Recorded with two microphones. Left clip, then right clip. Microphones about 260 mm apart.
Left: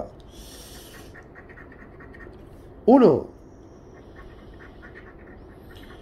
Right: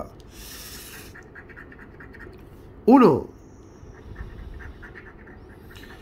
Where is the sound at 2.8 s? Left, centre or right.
Centre.